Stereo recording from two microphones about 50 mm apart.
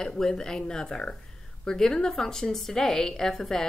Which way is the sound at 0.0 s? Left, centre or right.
Centre.